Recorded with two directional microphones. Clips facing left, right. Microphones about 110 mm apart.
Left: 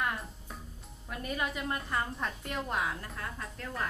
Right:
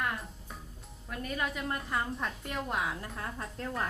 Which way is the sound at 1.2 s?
5° left (ahead or behind).